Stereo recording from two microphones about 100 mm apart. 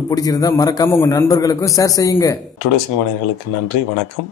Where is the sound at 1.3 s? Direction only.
35° left (ahead or behind).